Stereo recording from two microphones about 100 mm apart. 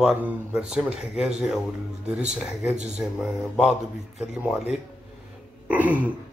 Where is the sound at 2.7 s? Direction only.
5° right (ahead or behind).